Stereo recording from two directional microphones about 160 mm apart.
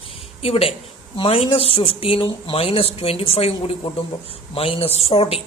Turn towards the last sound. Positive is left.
turn(degrees=40)  # may be behind; listen again after turning